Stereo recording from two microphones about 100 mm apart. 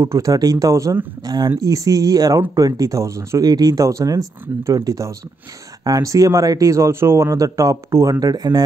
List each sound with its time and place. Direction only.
0.0 s speech: 35° right (ahead or behind)
1.2 s speech: 45° right (ahead or behind)